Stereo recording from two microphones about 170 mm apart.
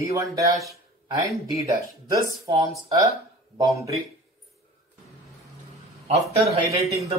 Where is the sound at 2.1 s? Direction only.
25° right (ahead or behind).